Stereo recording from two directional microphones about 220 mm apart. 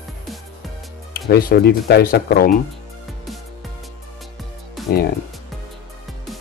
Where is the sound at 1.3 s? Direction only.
45° left (ahead or behind).